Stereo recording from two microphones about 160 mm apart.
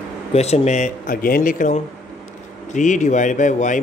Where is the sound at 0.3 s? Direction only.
40° left (ahead or behind).